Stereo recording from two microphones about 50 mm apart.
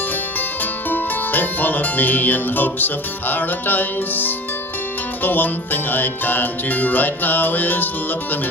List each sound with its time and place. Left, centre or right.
0.8 s music: left